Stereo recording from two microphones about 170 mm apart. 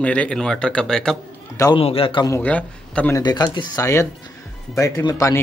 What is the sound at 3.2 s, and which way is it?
Speech, 25° left (ahead or behind).